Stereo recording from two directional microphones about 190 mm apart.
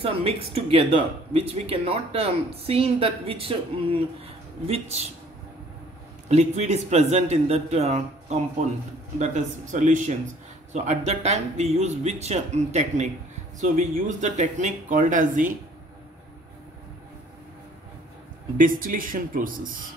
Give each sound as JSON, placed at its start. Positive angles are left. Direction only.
{"t": 0.0, "sound": "speech", "side_deg": -30}
{"t": 6.2, "sound": "speech", "side_deg": -35}
{"t": 18.6, "sound": "speech", "side_deg": -45}